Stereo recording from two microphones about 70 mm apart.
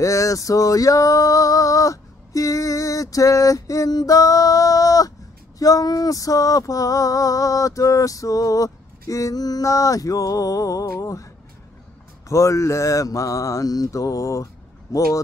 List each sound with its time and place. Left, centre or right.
0.0 s a sound: left
11.0 s mantra: left
12.3 s mantra: left